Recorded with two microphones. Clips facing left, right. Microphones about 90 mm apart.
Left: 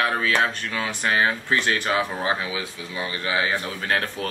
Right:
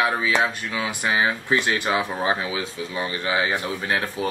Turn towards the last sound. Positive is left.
turn(degrees=-15)  # may be behind; listen again after turning